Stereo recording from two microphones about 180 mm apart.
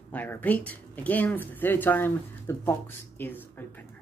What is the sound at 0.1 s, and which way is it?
Speech, 10° left (ahead or behind).